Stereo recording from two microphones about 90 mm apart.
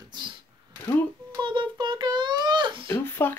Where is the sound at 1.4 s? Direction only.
65° right (ahead or behind).